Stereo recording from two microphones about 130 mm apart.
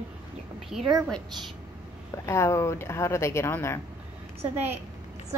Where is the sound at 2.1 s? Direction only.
20° left (ahead or behind).